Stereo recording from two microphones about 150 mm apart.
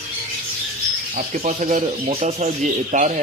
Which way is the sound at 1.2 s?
55° right (ahead or behind).